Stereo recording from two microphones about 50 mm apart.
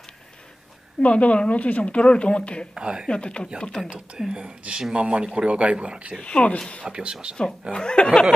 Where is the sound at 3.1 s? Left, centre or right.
Centre.